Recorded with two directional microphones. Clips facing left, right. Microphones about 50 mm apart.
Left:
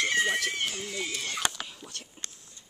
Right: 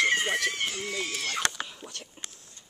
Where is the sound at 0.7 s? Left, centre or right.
Right.